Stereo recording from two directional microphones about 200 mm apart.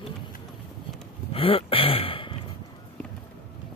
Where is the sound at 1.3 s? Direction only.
25° left (ahead or behind).